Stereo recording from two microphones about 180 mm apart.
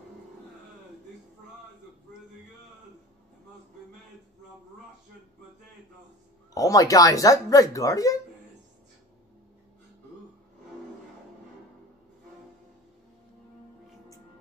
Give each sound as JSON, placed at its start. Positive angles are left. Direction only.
{"t": 6.5, "sound": "speech", "side_deg": 20}